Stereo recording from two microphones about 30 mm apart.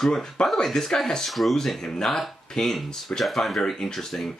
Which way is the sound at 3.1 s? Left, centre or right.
Left.